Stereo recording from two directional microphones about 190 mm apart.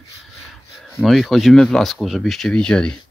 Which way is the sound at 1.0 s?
Centre (ahead or behind).